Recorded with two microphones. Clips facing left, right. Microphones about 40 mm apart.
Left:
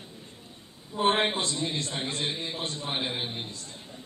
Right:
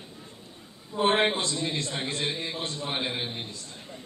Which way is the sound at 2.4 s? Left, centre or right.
Centre.